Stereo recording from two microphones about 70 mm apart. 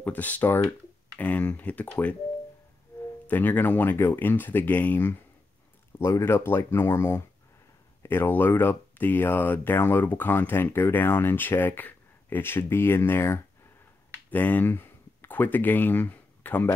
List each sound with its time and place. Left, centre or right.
0.0 s speech: left
3.3 s speech: left
14.3 s speech: left